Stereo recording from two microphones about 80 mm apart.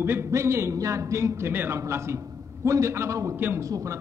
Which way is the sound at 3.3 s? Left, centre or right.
Right.